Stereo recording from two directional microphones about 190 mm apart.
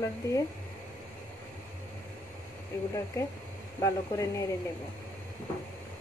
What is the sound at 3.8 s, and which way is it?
Speech, 15° left (ahead or behind).